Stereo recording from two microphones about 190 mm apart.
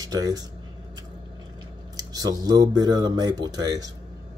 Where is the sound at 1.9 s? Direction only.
20° right (ahead or behind).